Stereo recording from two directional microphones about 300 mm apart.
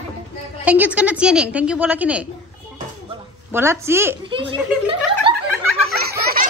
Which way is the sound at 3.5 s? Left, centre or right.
Centre.